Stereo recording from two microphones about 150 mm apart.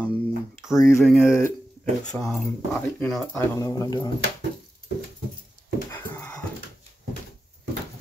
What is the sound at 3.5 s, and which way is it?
Speech, 25° left (ahead or behind).